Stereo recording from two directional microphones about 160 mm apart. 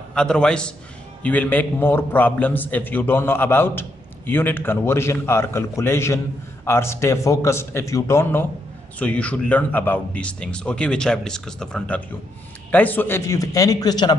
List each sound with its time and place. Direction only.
0.1 s a man's voice: 5° left (ahead or behind); by 14.1 s 25° left (ahead or behind)